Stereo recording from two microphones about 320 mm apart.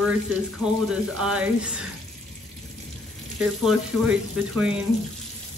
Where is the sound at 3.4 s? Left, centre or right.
Centre.